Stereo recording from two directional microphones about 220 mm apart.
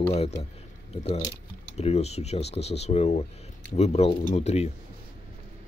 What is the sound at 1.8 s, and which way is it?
Speech, 30° left (ahead or behind).